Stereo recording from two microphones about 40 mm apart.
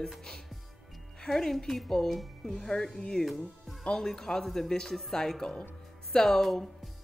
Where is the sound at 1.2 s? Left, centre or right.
Centre.